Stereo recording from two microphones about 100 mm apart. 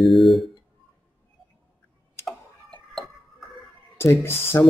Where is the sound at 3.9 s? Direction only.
25° left (ahead or behind).